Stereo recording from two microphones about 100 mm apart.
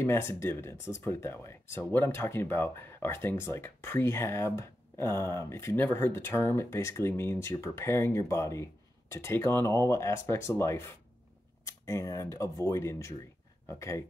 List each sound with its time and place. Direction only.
0.0 s speech: 25° left (ahead or behind)